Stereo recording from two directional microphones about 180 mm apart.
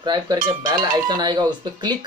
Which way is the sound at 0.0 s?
25° right (ahead or behind).